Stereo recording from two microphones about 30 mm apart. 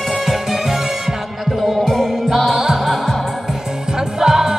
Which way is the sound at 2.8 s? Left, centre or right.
Centre.